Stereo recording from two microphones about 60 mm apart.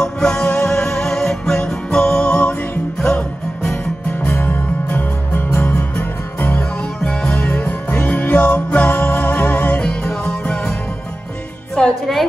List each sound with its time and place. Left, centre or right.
0.0 s music: centre
4.2 s music: left
11.8 s music: centre